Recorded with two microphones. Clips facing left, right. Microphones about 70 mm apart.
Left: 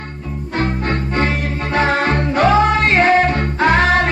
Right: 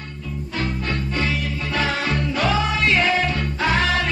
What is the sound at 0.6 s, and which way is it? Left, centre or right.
Music, left.